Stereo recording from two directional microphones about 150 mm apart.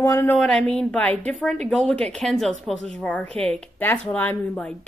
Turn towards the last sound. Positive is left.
turn(degrees=5)  # may be behind; listen again after turning